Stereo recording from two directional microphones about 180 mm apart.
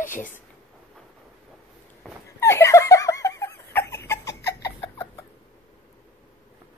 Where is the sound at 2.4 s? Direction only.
15° left (ahead or behind).